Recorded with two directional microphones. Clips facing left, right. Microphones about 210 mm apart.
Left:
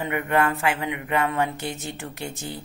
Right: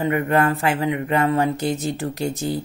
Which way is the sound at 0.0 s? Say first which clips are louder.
Right 4 dB; 35° right (ahead or behind).